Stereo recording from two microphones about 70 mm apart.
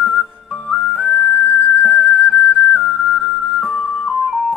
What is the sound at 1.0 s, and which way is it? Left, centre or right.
Music, centre.